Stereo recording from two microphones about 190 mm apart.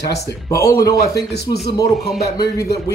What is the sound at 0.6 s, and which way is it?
Speech, 55° left (ahead or behind).